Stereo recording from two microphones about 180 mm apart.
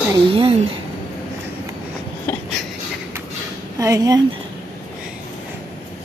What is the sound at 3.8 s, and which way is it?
Speech, 20° right (ahead or behind).